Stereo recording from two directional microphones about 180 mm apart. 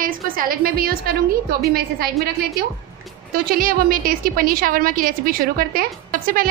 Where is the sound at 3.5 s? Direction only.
55° right (ahead or behind).